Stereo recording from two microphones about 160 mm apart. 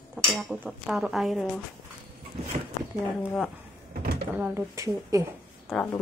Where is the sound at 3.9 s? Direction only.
80° right.